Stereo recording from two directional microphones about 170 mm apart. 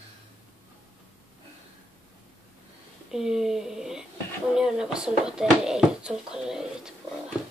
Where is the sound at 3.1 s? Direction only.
5° right (ahead or behind).